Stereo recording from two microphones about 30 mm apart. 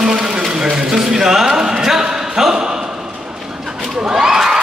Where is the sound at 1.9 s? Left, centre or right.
Centre.